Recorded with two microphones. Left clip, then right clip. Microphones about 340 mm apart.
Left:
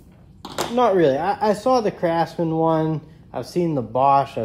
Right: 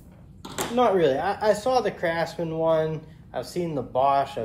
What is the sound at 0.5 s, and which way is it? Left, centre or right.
Speech, left.